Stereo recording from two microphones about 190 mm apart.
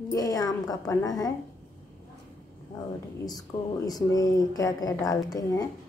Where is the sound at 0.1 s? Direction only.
20° left (ahead or behind).